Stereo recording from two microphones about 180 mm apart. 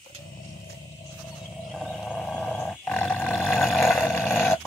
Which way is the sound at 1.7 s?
Centre (ahead or behind).